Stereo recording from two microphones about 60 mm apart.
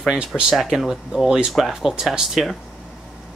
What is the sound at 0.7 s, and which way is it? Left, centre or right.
Speech, centre.